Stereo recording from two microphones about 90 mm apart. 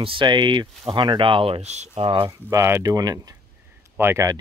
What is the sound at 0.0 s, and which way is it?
Speech, 65° right (ahead or behind).